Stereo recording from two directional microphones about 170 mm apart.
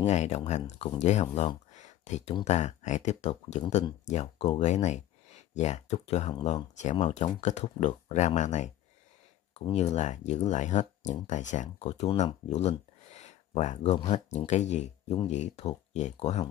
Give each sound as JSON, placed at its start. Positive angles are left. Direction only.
{"t": 0.0, "sound": "speech", "side_deg": 40}
{"t": 12.4, "sound": "a sound", "side_deg": 40}
{"t": 14.1, "sound": "speech", "side_deg": 45}